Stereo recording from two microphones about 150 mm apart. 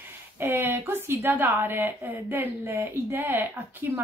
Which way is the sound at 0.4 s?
15° right (ahead or behind).